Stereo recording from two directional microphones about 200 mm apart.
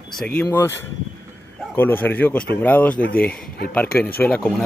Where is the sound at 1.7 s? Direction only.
10° left (ahead or behind).